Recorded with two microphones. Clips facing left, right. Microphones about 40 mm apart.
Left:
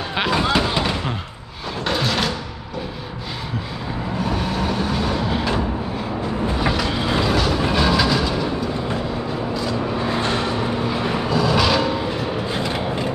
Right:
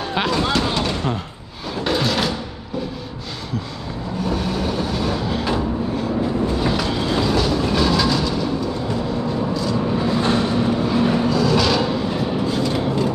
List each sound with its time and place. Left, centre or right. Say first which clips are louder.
0.1 s a sound: left 1 dB; centre
1.9 s music: right 1 dB; centre
4.2 s vehicle: right 1 dB; centre
6.6 s vehicle: even; centre
7.0 s train: even; centre
10.9 s a sound: right 3 dB; centre
12.4 s vehicle: right 2 dB; left